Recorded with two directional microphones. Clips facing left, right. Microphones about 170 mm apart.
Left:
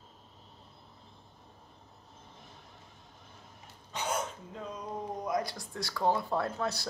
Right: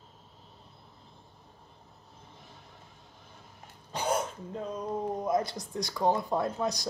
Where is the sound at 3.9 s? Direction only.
35° right (ahead or behind).